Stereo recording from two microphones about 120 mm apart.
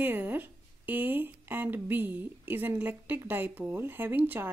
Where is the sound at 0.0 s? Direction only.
15° right (ahead or behind).